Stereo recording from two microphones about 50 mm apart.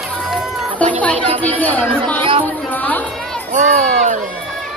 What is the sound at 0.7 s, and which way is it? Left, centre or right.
Chatter, left.